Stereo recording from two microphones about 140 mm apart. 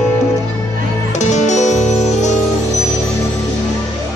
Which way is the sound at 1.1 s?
55° left (ahead or behind).